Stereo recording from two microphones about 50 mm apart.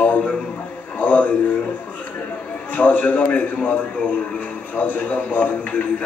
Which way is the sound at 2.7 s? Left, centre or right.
Left.